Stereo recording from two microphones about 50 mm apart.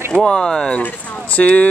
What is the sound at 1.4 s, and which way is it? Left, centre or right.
Speech, left.